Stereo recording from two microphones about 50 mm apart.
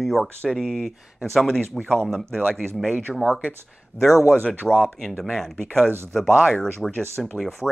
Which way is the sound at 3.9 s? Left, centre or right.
Left.